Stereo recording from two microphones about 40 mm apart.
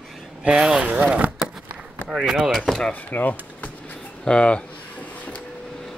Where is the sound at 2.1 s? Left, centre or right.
Centre.